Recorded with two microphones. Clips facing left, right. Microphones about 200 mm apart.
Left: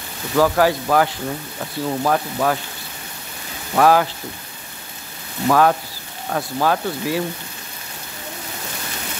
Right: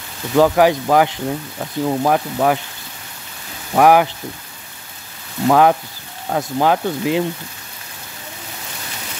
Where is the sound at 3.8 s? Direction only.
15° right (ahead or behind).